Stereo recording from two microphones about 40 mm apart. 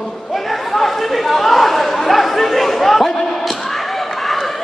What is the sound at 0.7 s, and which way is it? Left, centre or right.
Chatter, centre.